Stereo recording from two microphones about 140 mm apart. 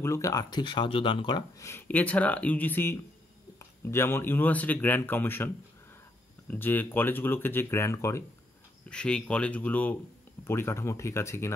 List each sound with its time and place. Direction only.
0.0 s speech: 20° left (ahead or behind); by 1.4 s 35° left (ahead or behind)
1.6 s speech: 15° left (ahead or behind)
8.8 s speech: 5° left (ahead or behind)